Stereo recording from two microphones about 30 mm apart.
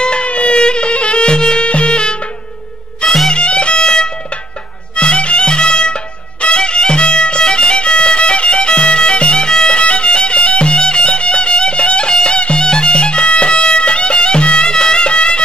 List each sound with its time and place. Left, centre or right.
0.2 s music: left
0.6 s music: left
1.6 s music: left
14.7 s music: left